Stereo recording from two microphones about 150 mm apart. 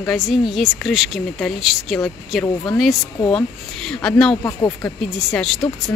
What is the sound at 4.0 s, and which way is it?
Speech, 5° left (ahead or behind).